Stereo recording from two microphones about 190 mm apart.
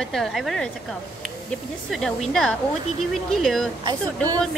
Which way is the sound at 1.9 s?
Centre (ahead or behind).